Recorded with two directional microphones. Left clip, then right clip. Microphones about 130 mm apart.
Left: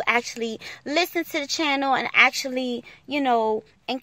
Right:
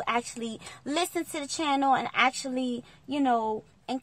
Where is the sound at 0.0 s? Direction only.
10° left (ahead or behind).